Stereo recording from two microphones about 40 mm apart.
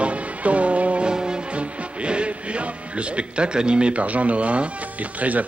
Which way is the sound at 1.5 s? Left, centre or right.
Right.